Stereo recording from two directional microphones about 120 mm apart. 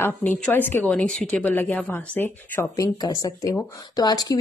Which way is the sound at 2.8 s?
35° left (ahead or behind).